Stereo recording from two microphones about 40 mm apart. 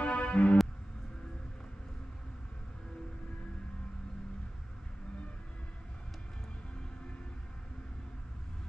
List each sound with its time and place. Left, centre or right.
0.0 s music: left